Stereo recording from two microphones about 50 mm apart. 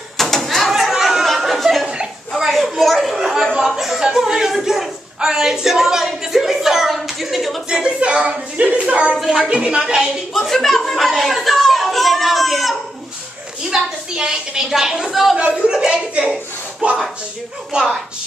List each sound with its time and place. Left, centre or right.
0.2 s a sound: centre
1.9 s a sound: centre
2.7 s speech: centre
3.2 s chatter: centre
3.5 s speech: centre
7.7 s speech: centre
9.1 s speech: centre
9.5 s speech: right
10.3 s a sound: centre
13.6 s a woman's voice: centre
15.3 s speech: centre